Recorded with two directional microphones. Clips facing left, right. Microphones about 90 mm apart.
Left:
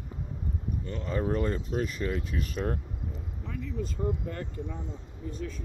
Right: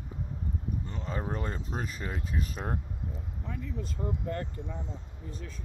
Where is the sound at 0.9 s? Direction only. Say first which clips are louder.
Left 8 dB; 20° right (ahead or behind).